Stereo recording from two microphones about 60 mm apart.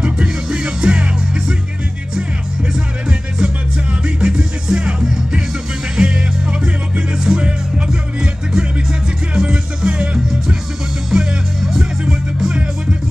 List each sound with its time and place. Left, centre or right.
0.0 s music: centre
2.7 s music: centre